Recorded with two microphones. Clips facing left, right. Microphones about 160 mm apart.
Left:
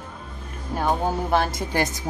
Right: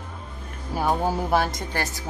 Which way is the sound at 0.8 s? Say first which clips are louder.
Even; 5° right (ahead or behind).